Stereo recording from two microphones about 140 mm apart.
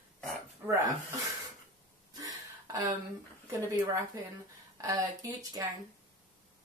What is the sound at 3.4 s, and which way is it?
A woman's voice, 25° right (ahead or behind).